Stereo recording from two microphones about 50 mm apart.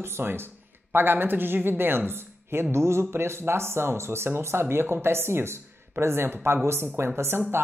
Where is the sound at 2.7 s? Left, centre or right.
Right.